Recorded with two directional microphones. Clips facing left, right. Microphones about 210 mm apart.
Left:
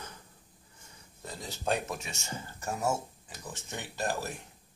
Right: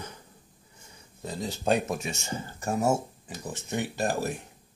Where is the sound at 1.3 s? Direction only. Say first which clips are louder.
Right 6 dB; 25° right (ahead or behind).